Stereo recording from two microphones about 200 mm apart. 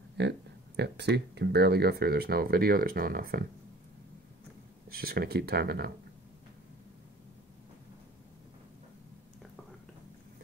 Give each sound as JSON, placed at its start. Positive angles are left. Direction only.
{"t": 0.2, "sound": "speech", "side_deg": -55}
{"t": 4.8, "sound": "speech", "side_deg": -50}